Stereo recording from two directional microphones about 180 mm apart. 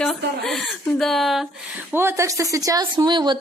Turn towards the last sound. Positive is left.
turn(degrees=-25)  # may be behind; listen again after turning